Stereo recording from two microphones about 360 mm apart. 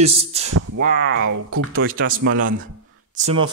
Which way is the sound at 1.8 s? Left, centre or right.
Right.